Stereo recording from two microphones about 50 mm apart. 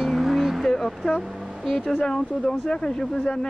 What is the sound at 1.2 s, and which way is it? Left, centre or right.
Speech, centre.